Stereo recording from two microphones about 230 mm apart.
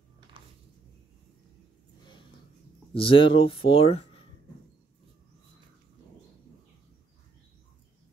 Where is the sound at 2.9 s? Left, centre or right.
Left.